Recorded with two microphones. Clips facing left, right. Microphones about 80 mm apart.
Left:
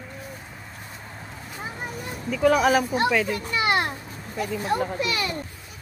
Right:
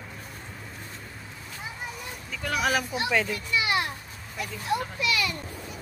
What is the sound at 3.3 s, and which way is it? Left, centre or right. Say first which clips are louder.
Children playing: left 4 dB; left.